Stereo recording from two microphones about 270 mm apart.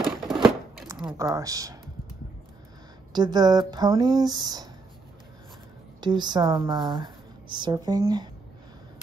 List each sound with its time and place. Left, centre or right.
0.0 s a sound: centre
1.0 s speech: centre
3.1 s speech: centre
5.9 s a woman's voice: centre